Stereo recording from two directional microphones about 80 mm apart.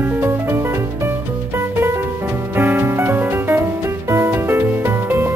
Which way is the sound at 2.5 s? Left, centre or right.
Right.